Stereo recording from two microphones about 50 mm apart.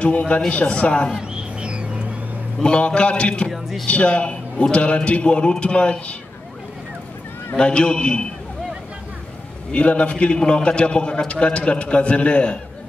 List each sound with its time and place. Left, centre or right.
0.0 s a man's voice: left
1.3 s a sound: right
2.6 s a man's voice: left
7.5 s a man's voice: left
9.7 s a man's voice: left